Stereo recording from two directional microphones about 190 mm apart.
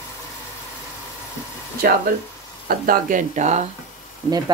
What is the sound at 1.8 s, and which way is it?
Speech, 50° right (ahead or behind).